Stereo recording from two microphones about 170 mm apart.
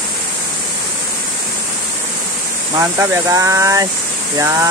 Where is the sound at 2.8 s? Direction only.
20° right (ahead or behind).